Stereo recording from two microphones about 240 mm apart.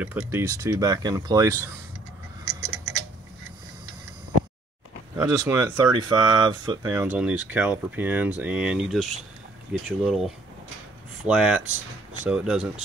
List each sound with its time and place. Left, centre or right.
0.0 s speech: centre
2.4 s clock: centre
5.1 s speech: centre
6.9 s speech: centre